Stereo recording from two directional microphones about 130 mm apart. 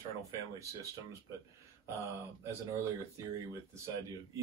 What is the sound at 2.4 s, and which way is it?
Speech, 20° right (ahead or behind).